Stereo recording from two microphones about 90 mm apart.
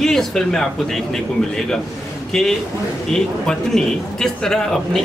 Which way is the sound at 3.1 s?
5° left (ahead or behind).